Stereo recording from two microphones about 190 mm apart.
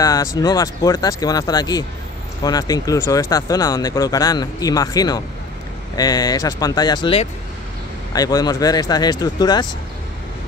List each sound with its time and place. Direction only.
0.0 s speech: 20° left (ahead or behind)